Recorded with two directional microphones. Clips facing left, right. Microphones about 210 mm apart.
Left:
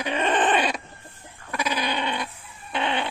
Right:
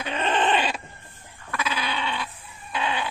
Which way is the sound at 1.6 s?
15° left (ahead or behind).